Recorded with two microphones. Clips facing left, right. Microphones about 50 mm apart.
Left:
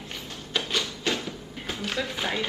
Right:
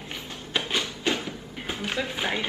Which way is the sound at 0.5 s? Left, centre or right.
Centre.